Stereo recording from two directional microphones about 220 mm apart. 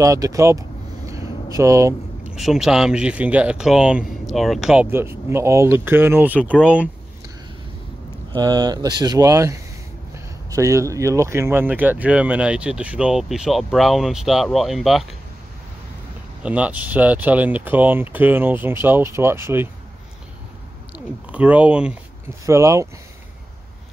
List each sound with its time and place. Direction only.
0.0 s a sound: 15° right (ahead or behind)
2.3 s speech: centre (ahead or behind)
8.3 s speech: 20° right (ahead or behind); by 15.0 s centre (ahead or behind)
16.4 s speech: 5° right (ahead or behind)
21.3 s speech: 5° right (ahead or behind)